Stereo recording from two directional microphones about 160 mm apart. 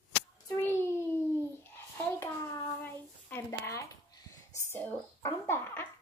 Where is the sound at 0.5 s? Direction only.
15° left (ahead or behind).